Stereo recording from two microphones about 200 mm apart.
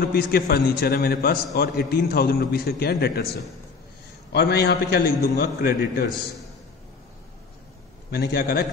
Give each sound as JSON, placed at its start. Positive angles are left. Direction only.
{"t": 0.0, "sound": "a man's voice", "side_deg": 50}
{"t": 8.1, "sound": "a man's voice", "side_deg": 50}